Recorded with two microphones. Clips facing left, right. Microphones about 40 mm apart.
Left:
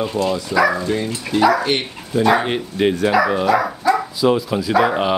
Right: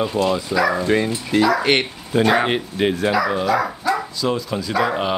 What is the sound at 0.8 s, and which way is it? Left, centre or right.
Speech, right.